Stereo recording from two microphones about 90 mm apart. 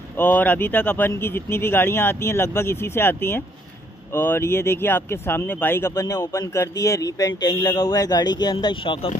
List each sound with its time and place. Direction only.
0.2 s speech: 20° left (ahead or behind); by 8.9 s 55° left (ahead or behind)